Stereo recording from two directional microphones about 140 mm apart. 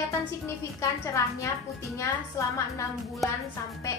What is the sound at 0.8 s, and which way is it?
A woman's voice, 20° left (ahead or behind).